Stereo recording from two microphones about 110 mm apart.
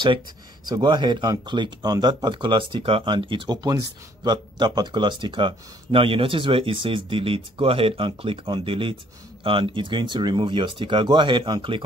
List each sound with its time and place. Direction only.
0.7 s speech: 45° right (ahead or behind)